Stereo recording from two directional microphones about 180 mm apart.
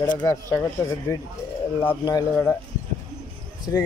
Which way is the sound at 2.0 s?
20° left (ahead or behind).